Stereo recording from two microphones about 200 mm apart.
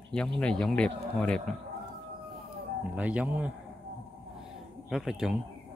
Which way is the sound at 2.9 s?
5° right (ahead or behind).